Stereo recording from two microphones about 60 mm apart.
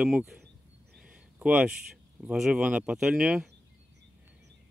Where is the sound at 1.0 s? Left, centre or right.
Centre.